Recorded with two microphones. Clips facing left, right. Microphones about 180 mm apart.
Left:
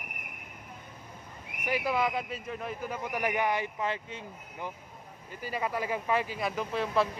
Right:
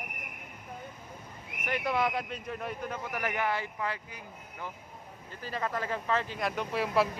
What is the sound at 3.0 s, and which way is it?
Speech, 15° left (ahead or behind).